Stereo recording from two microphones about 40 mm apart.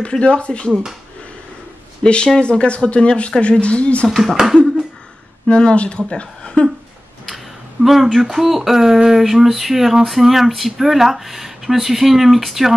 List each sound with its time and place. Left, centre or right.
0.1 s speech: left
2.0 s speech: left
4.1 s speech: centre
5.5 s speech: left
7.2 s a sound: centre
8.1 s speech: centre